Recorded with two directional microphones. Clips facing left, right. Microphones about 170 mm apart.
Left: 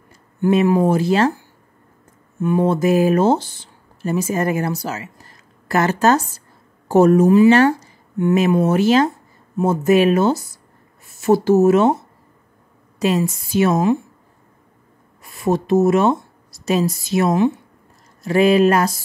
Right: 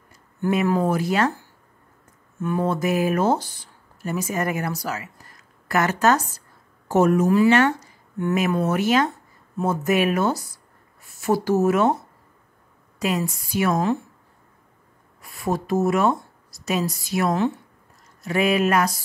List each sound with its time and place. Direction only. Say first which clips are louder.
0.7 s speech: left 5 dB; 25° left (ahead or behind)
2.4 s speech: left 6 dB; 25° left (ahead or behind)
13.0 s speech: left 6 dB; 25° left (ahead or behind)
15.4 s speech: left 6 dB; 25° left (ahead or behind)